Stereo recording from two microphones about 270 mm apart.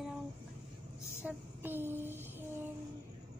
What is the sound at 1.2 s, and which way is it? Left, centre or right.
Child singing, centre.